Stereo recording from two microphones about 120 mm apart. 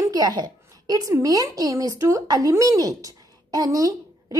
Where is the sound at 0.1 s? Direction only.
35° right (ahead or behind).